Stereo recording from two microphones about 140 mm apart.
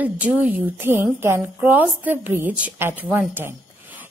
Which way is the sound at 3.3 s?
15° right (ahead or behind).